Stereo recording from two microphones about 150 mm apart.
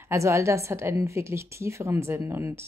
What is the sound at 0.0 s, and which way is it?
Speech, 20° right (ahead or behind).